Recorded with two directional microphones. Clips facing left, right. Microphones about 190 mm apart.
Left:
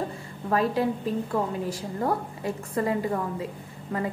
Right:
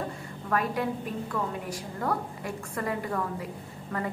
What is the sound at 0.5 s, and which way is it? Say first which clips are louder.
A woman's voice: left 4 dB; 25° left (ahead or behind).